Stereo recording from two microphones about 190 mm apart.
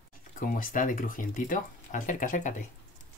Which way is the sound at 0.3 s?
45° left (ahead or behind).